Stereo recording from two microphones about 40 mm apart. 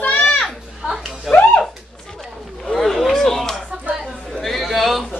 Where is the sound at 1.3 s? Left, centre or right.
Centre.